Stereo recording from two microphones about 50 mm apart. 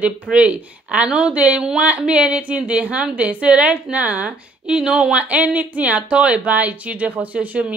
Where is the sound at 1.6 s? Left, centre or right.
Centre.